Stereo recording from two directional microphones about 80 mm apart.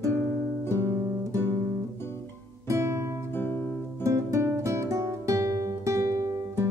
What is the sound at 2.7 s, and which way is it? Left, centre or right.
Music, right.